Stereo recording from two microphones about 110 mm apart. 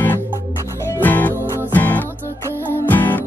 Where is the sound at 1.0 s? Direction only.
15° left (ahead or behind).